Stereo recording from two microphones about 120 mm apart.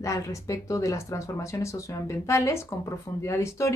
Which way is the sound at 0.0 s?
25° left (ahead or behind).